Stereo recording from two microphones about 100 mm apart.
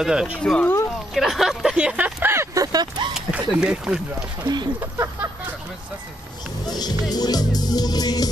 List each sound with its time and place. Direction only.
0.0 s speech: 5° right (ahead or behind)
0.4 s speech: 10° left (ahead or behind)
1.1 s speech: centre (ahead or behind)
2.3 s a sound: 35° right (ahead or behind)
3.2 s speech: 10° right (ahead or behind)
4.7 s speech: 30° right (ahead or behind)
6.6 s speech: 40° left (ahead or behind)